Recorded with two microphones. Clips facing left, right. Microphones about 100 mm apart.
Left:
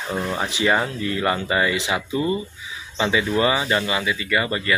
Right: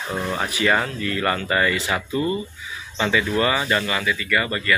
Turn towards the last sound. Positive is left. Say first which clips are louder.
# even
turn(degrees=20)  # may be behind; listen again after turning